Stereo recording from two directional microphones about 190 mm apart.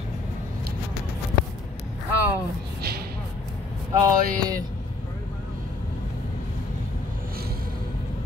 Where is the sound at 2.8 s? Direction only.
55° right (ahead or behind).